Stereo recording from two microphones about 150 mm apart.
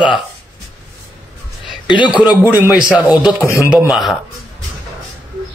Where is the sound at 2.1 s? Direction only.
10° right (ahead or behind).